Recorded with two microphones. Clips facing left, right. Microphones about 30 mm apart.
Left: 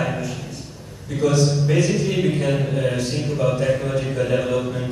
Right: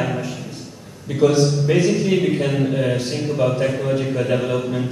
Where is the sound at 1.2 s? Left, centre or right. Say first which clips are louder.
Right 3 dB; right.